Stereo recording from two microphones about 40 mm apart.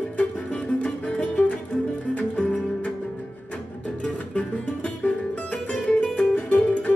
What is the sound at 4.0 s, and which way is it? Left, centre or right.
Music, left.